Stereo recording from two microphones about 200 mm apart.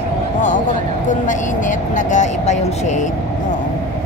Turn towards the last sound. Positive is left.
turn(degrees=35)  # may be behind; listen again after turning